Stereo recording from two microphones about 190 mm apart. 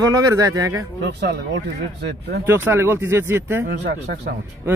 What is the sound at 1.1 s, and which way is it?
Speech, 60° right (ahead or behind).